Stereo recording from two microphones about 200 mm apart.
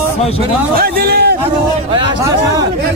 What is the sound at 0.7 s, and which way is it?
Speech, 50° right (ahead or behind).